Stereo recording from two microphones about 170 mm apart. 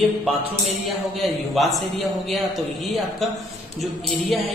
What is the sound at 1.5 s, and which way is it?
Speech, centre (ahead or behind).